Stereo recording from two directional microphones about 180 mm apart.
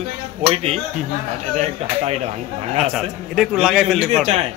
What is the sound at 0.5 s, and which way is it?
Speech, 35° right (ahead or behind).